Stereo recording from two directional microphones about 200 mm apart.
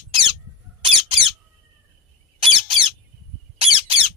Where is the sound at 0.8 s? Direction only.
25° right (ahead or behind).